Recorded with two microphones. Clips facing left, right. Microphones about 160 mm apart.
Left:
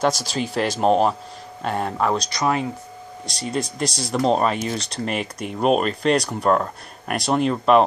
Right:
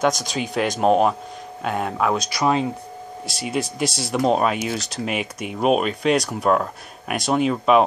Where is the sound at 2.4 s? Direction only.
20° right (ahead or behind).